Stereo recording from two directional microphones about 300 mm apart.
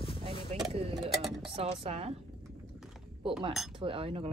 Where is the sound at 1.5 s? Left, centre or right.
Centre.